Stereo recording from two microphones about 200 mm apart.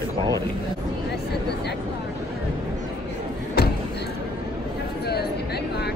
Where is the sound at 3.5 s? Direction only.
55° left (ahead or behind).